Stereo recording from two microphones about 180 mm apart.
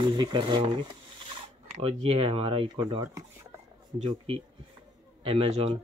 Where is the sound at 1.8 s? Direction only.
30° right (ahead or behind).